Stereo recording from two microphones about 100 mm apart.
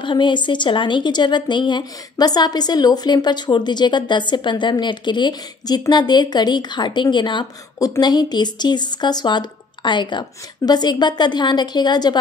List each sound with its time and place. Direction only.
0.0 s a woman's voice: 55° left (ahead or behind)
7.8 s a woman's voice: 40° left (ahead or behind)